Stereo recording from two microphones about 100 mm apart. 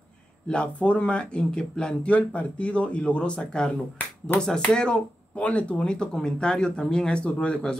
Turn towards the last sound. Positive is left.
turn(degrees=10)  # may be behind; listen again after turning